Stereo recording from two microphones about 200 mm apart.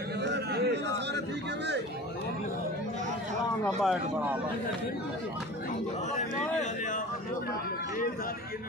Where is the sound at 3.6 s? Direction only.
Centre (ahead or behind).